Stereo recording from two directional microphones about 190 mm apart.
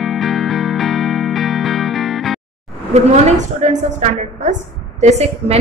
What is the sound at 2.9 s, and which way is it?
A woman's voice, 35° right (ahead or behind).